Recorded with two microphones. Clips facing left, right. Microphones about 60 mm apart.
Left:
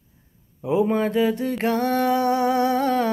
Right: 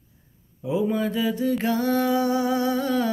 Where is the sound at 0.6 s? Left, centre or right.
Left.